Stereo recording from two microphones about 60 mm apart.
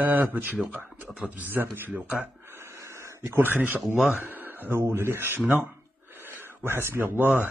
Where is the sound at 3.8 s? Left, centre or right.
Centre.